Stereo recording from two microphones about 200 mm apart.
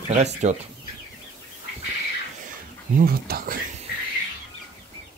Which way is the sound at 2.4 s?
40° right (ahead or behind).